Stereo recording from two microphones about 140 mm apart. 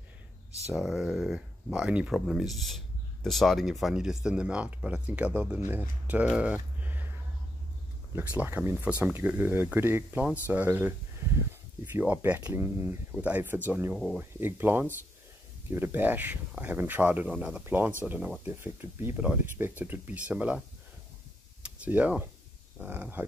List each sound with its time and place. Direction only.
0.7 s speech: 5° right (ahead or behind)
8.1 s speech: 10° right (ahead or behind)
13.9 s speech: centre (ahead or behind)
14.4 s speech: 15° right (ahead or behind)
21.6 s speech: 10° right (ahead or behind)